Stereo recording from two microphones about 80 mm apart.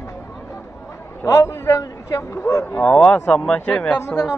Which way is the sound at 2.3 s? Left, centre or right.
Left.